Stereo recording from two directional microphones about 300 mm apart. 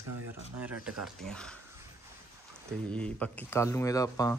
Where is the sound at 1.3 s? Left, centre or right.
Centre.